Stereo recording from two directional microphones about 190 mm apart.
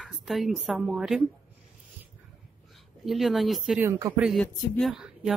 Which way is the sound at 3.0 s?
Centre (ahead or behind).